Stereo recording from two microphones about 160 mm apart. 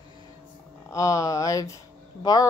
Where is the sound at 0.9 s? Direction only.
20° left (ahead or behind).